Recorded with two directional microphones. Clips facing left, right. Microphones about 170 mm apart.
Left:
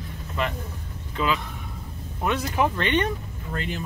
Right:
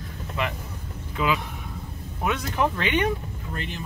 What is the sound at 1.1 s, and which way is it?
Speech, 10° right (ahead or behind).